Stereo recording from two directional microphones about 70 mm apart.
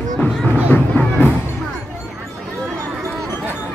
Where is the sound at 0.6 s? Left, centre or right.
Left.